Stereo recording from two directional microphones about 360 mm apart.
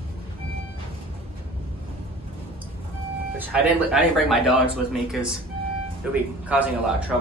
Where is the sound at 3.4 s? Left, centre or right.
Centre.